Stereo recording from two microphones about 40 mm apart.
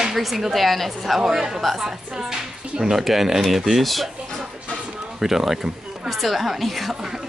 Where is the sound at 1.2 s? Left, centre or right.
Centre.